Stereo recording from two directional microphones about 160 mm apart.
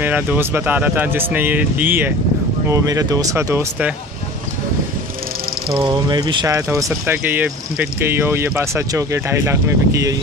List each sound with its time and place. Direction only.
0.0 s speech: 10° right (ahead or behind)
5.8 s speech: 25° right (ahead or behind)